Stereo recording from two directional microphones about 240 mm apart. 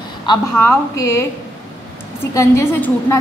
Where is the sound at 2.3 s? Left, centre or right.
Centre.